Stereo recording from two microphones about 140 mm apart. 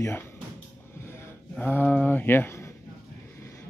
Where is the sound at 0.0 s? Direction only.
15° left (ahead or behind).